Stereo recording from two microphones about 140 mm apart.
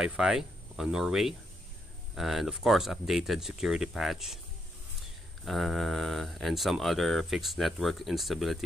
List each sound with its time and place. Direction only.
0.0 s speech: 5° right (ahead or behind)
5.4 s speech: centre (ahead or behind)